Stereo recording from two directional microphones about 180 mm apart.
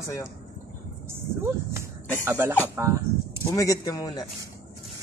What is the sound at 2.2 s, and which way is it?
Speech, 15° right (ahead or behind).